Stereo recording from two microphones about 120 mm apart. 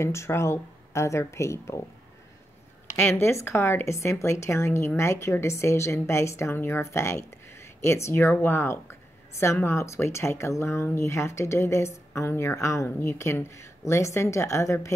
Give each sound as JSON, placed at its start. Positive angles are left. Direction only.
{"t": 0.0, "sound": "speech", "side_deg": 20}
{"t": 3.0, "sound": "speech", "side_deg": 20}